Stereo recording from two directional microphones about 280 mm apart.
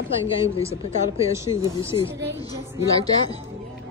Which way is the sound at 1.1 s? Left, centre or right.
Centre.